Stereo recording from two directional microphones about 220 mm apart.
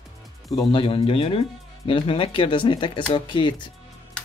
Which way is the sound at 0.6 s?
25° left (ahead or behind).